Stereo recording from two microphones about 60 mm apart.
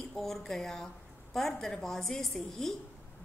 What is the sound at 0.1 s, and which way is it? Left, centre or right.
A woman's voice, centre.